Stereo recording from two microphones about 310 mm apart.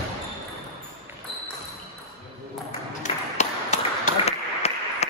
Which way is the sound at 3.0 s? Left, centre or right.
Left.